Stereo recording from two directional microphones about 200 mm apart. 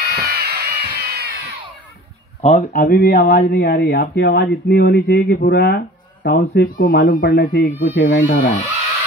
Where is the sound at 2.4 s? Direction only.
35° left (ahead or behind).